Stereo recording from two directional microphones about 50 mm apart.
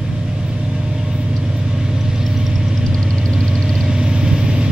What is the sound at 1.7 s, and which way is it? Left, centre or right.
Vehicle, centre.